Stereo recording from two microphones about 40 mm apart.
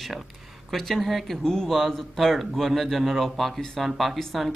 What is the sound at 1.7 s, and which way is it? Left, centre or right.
Speech, centre.